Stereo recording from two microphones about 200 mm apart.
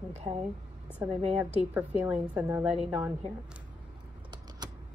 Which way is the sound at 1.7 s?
10° right (ahead or behind).